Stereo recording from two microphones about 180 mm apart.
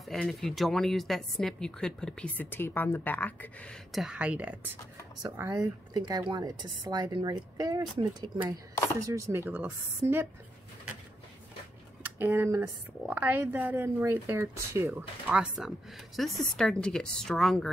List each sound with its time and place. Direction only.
0.0 s a woman's voice: centre (ahead or behind)
5.2 s speech: 20° right (ahead or behind)
9.0 s speech: 15° right (ahead or behind)
12.0 s a woman's voice: 10° right (ahead or behind)